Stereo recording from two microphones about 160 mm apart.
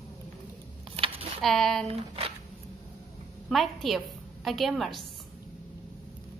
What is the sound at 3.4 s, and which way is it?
A woman's voice, centre (ahead or behind).